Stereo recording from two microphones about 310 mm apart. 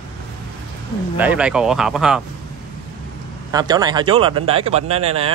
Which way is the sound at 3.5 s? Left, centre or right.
Centre.